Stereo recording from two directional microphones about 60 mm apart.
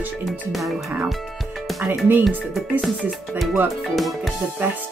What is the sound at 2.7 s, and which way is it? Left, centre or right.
Speech, right.